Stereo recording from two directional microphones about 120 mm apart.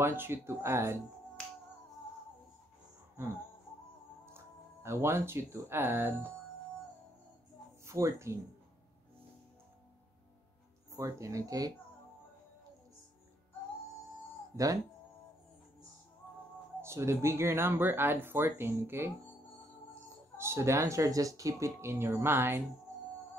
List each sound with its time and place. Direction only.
0.0 s speech: 20° right (ahead or behind)
4.8 s speech: 20° right (ahead or behind)
7.8 s speech: 25° right (ahead or behind)
10.9 s speech: 25° right (ahead or behind)
14.5 s speech: 30° right (ahead or behind)
16.8 s speech: 20° right (ahead or behind)